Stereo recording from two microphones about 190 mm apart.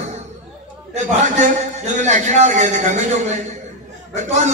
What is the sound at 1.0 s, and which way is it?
A man's voice, 40° right (ahead or behind).